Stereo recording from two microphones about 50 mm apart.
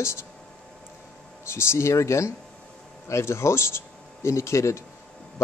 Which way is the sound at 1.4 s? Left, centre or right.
Left.